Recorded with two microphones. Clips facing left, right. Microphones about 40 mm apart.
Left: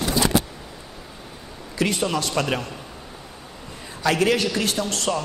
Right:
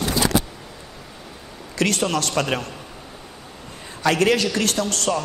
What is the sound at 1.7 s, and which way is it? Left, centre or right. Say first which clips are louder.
Speech: right 2 dB; right.